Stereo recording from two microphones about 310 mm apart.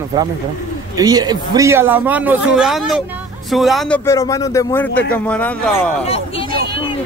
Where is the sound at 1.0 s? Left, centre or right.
Centre.